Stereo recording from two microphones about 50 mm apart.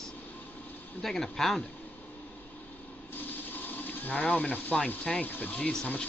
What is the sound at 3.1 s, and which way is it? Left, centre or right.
Speech, left.